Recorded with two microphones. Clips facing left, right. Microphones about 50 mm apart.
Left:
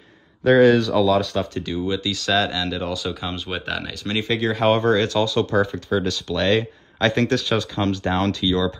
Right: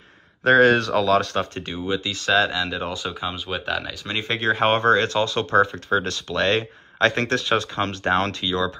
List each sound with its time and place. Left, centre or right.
0.4 s speech: right
1.9 s speech: right
3.1 s speech: centre
3.4 s speech: centre
4.1 s speech: right